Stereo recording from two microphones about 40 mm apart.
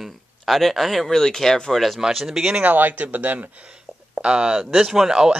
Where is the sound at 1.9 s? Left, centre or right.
Centre.